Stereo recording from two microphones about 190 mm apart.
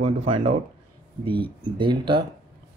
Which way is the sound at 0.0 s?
25° right (ahead or behind).